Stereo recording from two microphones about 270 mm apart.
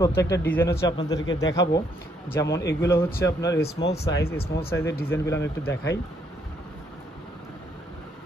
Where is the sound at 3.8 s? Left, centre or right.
Left.